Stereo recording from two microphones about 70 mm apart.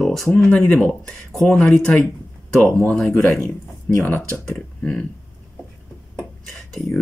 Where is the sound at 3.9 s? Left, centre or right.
Left.